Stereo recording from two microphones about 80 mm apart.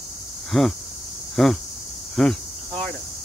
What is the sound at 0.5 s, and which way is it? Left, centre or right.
Speech, centre.